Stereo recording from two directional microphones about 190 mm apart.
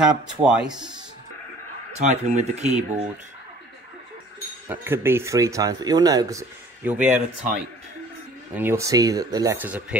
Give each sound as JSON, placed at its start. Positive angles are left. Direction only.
{"t": 0.0, "sound": "speech", "side_deg": -5}
{"t": 1.9, "sound": "speech", "side_deg": -35}
{"t": 4.6, "sound": "speech", "side_deg": -10}
{"t": 8.5, "sound": "speech", "side_deg": -15}